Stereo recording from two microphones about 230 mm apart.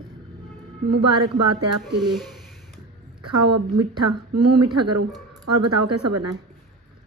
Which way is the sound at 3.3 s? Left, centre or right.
Right.